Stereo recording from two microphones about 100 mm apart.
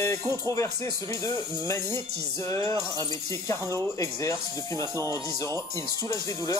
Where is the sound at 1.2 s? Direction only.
30° left (ahead or behind).